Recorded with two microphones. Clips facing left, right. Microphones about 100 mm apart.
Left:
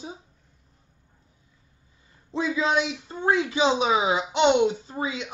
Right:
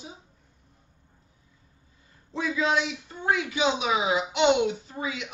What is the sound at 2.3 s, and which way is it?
A man's voice, 25° left (ahead or behind).